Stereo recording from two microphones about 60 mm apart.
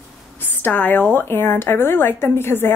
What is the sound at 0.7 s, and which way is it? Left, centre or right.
A woman's voice, left.